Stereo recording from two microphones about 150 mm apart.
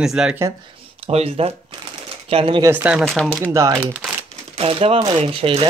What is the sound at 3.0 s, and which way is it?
Speech, 5° left (ahead or behind).